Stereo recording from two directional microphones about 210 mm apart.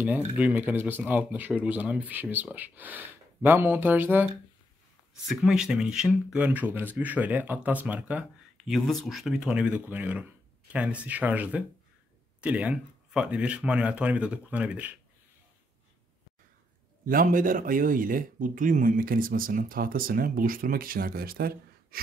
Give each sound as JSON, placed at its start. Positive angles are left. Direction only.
{"t": 0.4, "sound": "speech", "side_deg": -5}
{"t": 17.0, "sound": "speech", "side_deg": -40}